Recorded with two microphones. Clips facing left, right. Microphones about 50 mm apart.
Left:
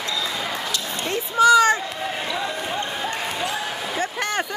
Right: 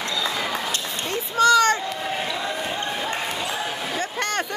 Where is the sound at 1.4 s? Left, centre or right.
Centre.